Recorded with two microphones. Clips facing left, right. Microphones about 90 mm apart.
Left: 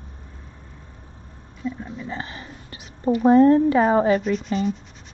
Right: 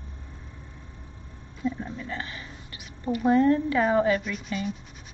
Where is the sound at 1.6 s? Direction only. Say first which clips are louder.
Even; centre (ahead or behind).